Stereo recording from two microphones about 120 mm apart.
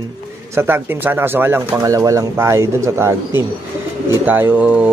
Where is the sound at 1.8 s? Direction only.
25° right (ahead or behind).